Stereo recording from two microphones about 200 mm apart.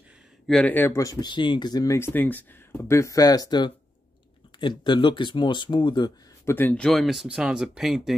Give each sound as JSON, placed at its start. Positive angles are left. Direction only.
{"t": 0.5, "sound": "speech", "side_deg": 5}